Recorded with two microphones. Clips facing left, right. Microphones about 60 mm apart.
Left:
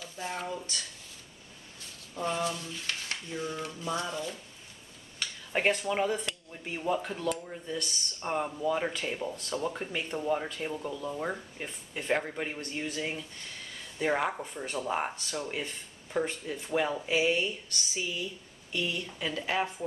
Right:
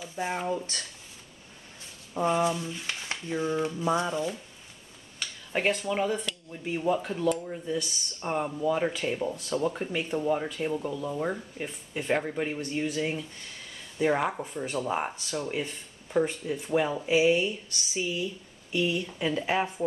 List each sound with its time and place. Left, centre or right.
0.0 s speech: right
2.1 s speech: right
5.2 s speech: centre